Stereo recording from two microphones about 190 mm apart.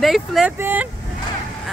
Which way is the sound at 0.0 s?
Centre (ahead or behind).